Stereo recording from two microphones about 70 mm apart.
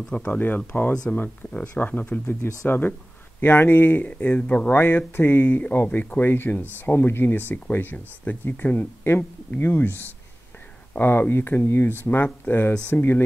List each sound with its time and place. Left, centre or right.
0.1 s speech: left
4.7 s speech: left
6.2 s speech: left